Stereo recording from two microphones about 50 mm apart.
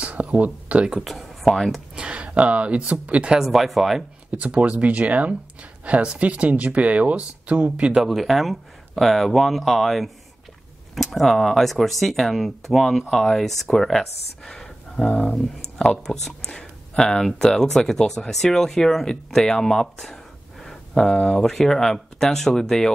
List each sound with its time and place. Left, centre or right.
0.0 s a sound: right
1.0 s speech: centre
2.0 s speech: right
3.3 s speech: centre
4.3 s speech: right
7.8 s speech: centre
8.1 s speech: centre
15.0 s speech: left
16.0 s speech: centre
21.4 s speech: centre